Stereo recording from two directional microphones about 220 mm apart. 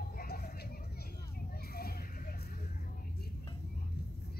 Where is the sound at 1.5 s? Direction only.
45° left (ahead or behind).